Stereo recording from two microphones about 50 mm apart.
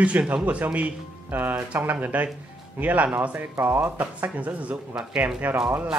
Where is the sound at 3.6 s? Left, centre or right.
Right.